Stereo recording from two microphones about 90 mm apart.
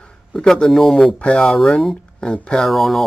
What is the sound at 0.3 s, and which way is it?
Speech, 5° left (ahead or behind).